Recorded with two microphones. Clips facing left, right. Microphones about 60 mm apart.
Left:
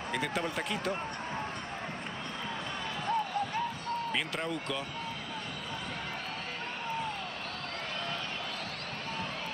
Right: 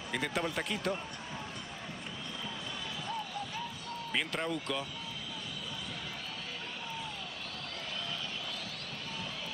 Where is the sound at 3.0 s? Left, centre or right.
Left.